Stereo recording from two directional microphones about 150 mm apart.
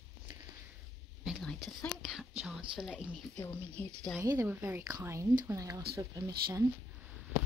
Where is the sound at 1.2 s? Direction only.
Centre (ahead or behind).